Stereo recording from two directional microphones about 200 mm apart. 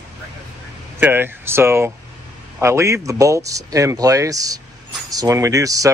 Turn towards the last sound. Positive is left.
turn(degrees=-15)  # may be behind; listen again after turning